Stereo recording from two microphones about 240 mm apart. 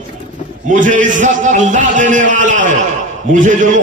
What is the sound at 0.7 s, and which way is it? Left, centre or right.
A man's voice, right.